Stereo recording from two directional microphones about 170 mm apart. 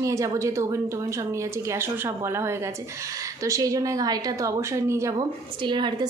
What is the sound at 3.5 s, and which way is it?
A woman's voice, 20° right (ahead or behind).